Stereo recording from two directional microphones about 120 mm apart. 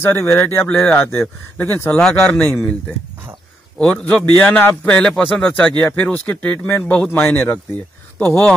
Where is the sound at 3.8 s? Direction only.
10° left (ahead or behind).